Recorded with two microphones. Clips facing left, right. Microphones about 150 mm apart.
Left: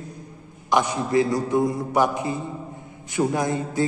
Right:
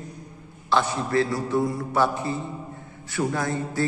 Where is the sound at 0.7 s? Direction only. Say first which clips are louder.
Left 2 dB; 15° left (ahead or behind).